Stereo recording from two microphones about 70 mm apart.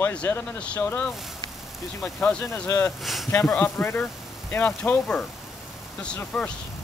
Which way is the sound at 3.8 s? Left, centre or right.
Centre.